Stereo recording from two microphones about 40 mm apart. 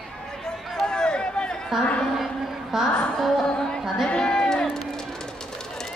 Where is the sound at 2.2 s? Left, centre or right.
Centre.